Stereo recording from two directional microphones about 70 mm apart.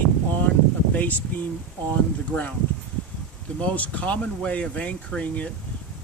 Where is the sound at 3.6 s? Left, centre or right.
Centre.